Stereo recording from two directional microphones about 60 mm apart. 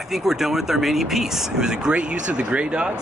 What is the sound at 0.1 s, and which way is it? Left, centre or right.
Speech, centre.